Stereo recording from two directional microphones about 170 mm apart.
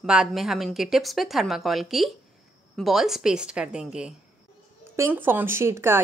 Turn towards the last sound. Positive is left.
turn(degrees=-15)  # may be behind; listen again after turning